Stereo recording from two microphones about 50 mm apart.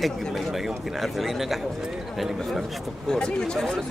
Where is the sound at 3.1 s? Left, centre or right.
Centre.